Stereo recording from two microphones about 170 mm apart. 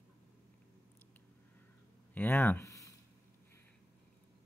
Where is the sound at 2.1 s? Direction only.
10° left (ahead or behind).